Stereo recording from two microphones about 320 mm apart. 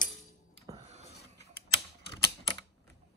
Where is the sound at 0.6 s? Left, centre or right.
Centre.